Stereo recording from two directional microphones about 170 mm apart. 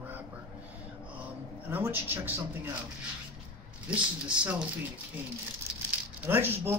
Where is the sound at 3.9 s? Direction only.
5° right (ahead or behind).